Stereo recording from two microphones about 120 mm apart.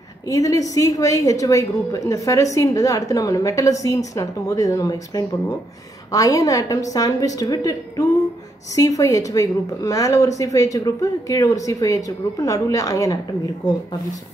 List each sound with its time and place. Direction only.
0.3 s speech: 30° left (ahead or behind)